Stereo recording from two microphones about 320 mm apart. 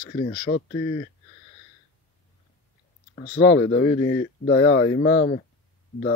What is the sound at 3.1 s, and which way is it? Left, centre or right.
Speech, left.